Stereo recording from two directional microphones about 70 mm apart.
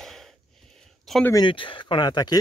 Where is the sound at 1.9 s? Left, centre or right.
Left.